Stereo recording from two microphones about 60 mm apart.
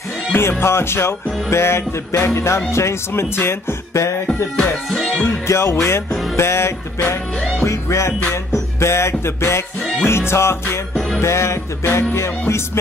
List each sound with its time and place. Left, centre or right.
0.4 s music: left
5.5 s music: left